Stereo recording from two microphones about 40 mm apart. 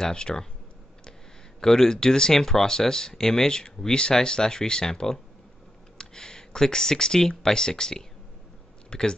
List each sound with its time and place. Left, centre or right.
0.0 s speech: centre
1.6 s speech: centre